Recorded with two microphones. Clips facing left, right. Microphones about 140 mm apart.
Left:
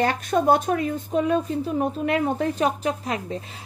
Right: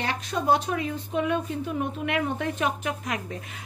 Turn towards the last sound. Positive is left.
turn(degrees=30)  # may be behind; listen again after turning